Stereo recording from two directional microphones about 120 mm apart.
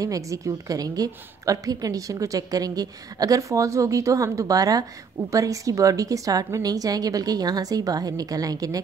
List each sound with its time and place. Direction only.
0.0 s a woman's voice: 30° right (ahead or behind)